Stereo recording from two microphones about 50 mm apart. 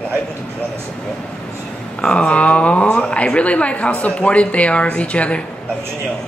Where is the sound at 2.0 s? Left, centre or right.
Left.